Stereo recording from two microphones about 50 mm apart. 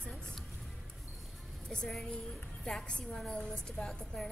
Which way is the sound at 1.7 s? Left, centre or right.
Centre.